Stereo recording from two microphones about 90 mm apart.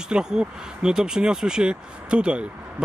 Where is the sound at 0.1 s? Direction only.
10° right (ahead or behind).